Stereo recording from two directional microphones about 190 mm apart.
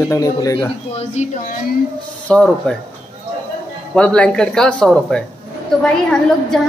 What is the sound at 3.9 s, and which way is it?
A woman's voice, 5° left (ahead or behind).